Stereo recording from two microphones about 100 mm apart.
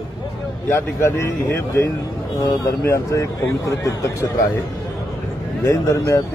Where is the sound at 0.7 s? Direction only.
25° left (ahead or behind).